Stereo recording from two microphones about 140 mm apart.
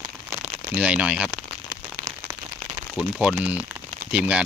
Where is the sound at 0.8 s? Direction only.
10° right (ahead or behind).